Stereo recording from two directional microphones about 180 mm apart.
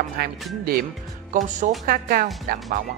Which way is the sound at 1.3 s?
45° right (ahead or behind).